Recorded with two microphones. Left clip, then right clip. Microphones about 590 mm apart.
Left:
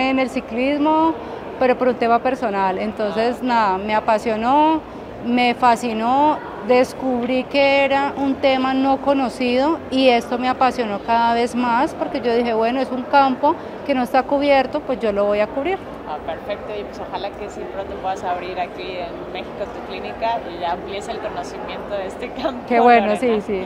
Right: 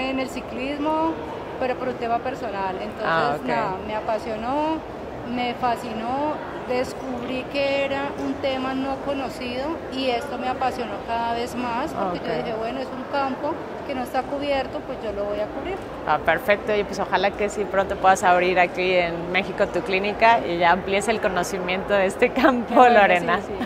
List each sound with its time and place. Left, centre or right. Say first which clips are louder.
0.0 s speech: left 7 dB; left
1.6 s a sound: left 9 dB; left
16.1 s speech: right 7 dB; right